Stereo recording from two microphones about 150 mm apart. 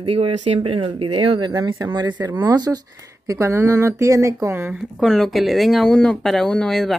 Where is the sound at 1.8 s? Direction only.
25° right (ahead or behind).